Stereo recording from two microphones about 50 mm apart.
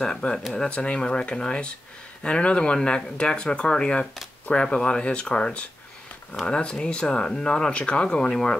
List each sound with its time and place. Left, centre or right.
0.0 s speech: centre
0.7 s speech: left